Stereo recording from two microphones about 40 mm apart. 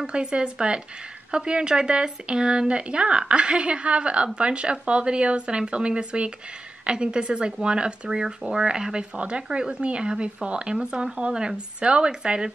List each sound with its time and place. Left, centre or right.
0.0 s speech: right